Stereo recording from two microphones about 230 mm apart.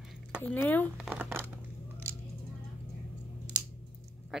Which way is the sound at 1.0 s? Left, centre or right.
Centre.